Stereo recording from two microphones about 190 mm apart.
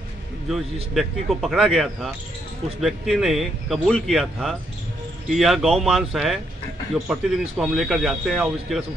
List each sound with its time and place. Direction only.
0.9 s speech: centre (ahead or behind)